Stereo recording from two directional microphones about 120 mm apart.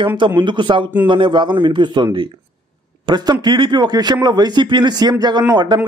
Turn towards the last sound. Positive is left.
turn(degrees=-35)  # may be behind; listen again after turning